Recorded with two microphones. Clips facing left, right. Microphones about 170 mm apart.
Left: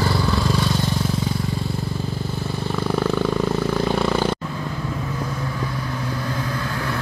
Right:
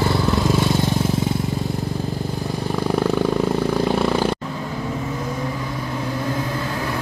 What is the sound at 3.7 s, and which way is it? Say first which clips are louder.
Vehicle: right 1 dB; 5° right (ahead or behind).